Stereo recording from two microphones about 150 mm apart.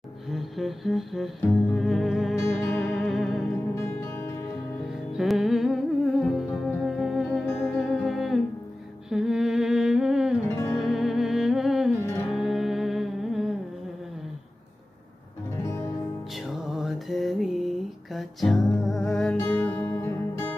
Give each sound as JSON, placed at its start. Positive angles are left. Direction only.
{"t": 0.3, "sound": "music", "side_deg": 0}
{"t": 3.7, "sound": "music", "side_deg": 15}
{"t": 5.1, "sound": "music", "side_deg": 0}
{"t": 9.1, "sound": "humming", "side_deg": -5}
{"t": 10.8, "sound": "music", "side_deg": 0}
{"t": 15.5, "sound": "music", "side_deg": 20}
{"t": 16.3, "sound": "music", "side_deg": 0}